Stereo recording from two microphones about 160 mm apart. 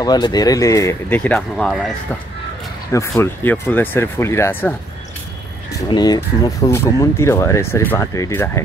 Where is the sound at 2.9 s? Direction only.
15° left (ahead or behind).